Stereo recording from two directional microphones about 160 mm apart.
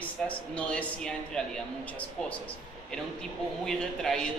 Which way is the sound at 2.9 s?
5° left (ahead or behind).